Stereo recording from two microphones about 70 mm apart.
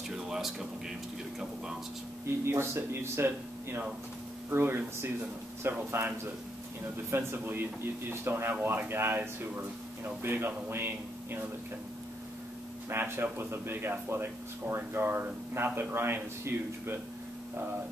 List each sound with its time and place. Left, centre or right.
0.1 s speech: centre
2.2 s speech: right
7.1 s speech: right
12.9 s speech: right